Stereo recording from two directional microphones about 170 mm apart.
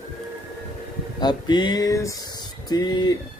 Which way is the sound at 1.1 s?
25° left (ahead or behind).